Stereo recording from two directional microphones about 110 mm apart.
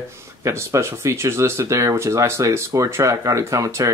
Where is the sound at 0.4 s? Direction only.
25° right (ahead or behind).